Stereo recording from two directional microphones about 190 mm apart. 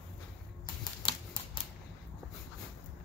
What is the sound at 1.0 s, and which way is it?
Typewriter, 30° left (ahead or behind).